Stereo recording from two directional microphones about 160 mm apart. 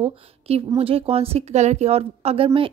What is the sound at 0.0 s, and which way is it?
A woman's voice, 35° right (ahead or behind).